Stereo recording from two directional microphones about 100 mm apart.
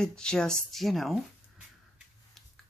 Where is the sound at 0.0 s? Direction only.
10° left (ahead or behind).